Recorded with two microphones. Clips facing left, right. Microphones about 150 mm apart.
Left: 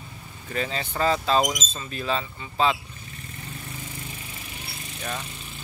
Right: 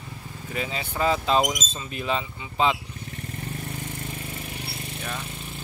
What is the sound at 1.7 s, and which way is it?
Speech, 15° right (ahead or behind).